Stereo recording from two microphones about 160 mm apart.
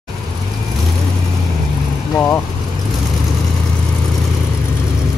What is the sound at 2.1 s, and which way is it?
Speech, 10° left (ahead or behind).